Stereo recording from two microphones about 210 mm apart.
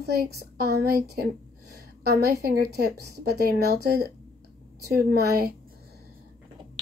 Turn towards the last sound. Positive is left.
turn(degrees=-45)  # may be behind; listen again after turning